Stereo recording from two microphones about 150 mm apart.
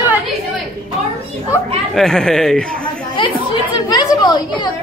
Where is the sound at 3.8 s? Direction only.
30° left (ahead or behind).